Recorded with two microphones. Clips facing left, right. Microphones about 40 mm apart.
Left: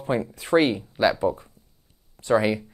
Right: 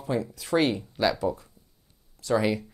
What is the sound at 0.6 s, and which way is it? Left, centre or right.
Speech, centre.